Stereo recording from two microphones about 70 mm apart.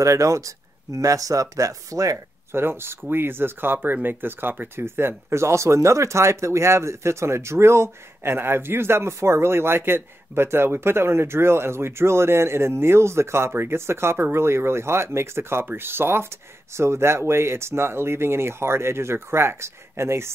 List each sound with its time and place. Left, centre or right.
0.0 s speech: right
2.5 s speech: right